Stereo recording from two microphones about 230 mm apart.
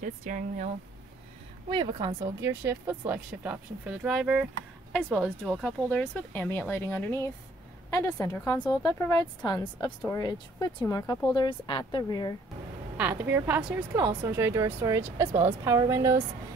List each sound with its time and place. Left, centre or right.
0.0 s speech: right
1.7 s a woman's voice: centre
12.9 s speech: centre